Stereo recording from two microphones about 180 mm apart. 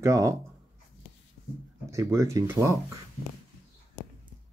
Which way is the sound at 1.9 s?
15° right (ahead or behind).